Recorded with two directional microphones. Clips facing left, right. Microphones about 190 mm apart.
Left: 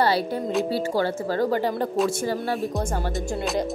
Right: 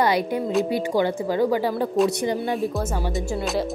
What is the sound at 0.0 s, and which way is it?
A woman's voice, 15° right (ahead or behind).